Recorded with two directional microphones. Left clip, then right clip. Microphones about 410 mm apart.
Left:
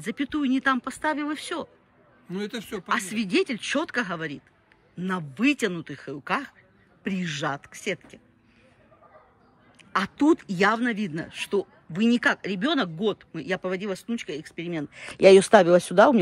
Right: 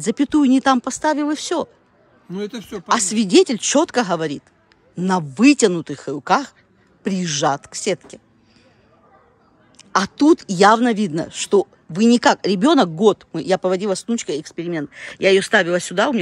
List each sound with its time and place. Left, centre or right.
0.0 s speech: centre
9.9 s speech: centre